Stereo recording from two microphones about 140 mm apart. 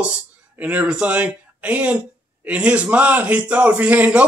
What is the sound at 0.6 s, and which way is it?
Speech, 10° right (ahead or behind).